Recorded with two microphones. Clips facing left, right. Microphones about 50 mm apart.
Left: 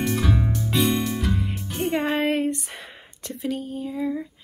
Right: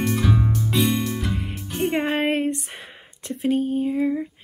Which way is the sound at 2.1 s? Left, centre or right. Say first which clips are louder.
Right 1 dB; right.